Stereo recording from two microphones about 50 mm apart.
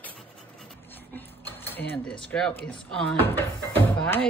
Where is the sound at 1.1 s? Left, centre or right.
Left.